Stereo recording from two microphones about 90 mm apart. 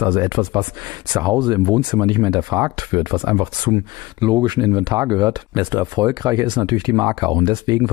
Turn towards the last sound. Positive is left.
turn(degrees=-50)  # may be behind; listen again after turning